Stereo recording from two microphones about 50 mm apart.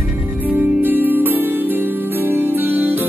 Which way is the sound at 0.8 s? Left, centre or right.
Right.